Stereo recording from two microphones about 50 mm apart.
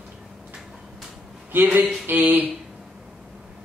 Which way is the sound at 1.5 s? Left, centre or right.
Right.